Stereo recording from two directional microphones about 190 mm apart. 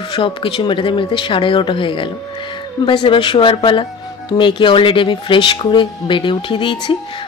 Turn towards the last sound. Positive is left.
turn(degrees=25)  # may be behind; listen again after turning